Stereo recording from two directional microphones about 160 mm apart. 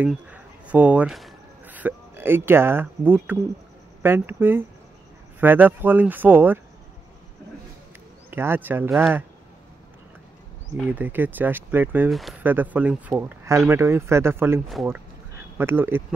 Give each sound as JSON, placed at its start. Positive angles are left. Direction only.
{"t": 0.0, "sound": "speech", "side_deg": -10}
{"t": 8.3, "sound": "speech", "side_deg": -15}
{"t": 10.9, "sound": "speech", "side_deg": -10}
{"t": 12.1, "sound": "speech", "side_deg": 0}
{"t": 12.4, "sound": "speech", "side_deg": -10}